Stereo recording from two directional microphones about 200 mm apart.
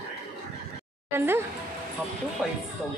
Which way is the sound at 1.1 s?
10° right (ahead or behind).